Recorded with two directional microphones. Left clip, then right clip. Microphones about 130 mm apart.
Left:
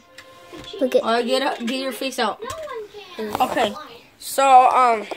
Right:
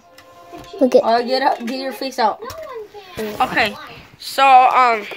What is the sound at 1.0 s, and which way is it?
Speech, 25° left (ahead or behind).